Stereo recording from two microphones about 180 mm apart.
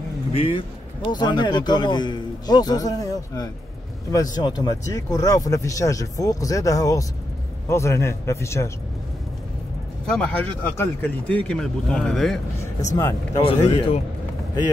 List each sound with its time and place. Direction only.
0.3 s a man's voice: 30° left (ahead or behind)
10.0 s speech: 5° left (ahead or behind)
12.9 s a man's voice: 20° left (ahead or behind)
13.4 s speech: 30° left (ahead or behind)